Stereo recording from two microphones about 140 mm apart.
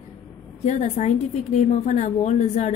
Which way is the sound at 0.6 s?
50° left (ahead or behind).